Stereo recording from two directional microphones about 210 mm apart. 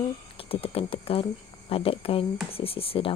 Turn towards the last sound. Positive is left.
turn(degrees=25)  # may be behind; listen again after turning